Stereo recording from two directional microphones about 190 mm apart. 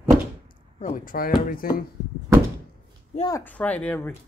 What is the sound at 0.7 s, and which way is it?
Speech, 40° left (ahead or behind).